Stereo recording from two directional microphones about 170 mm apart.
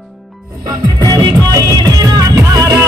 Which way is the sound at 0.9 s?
25° right (ahead or behind).